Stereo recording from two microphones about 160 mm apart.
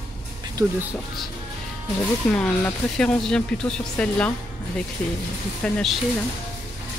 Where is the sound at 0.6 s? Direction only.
20° right (ahead or behind).